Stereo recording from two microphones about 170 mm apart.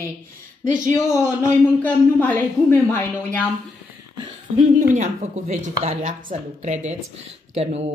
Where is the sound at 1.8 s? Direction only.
10° left (ahead or behind).